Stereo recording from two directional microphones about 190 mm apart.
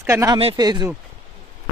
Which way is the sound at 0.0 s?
15° right (ahead or behind).